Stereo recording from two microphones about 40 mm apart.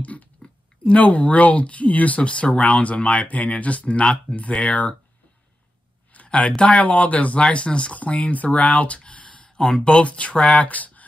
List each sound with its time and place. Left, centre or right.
0.0 s chewing: left
0.9 s speech: left
2.7 s speech: left
3.8 s speech: left
6.1 s speech: left
9.6 s speech: centre
9.8 s speech: left